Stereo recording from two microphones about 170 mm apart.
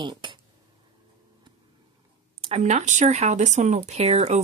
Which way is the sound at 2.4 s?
40° right (ahead or behind).